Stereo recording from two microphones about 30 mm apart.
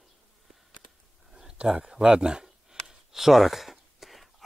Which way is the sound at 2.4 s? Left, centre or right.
Centre.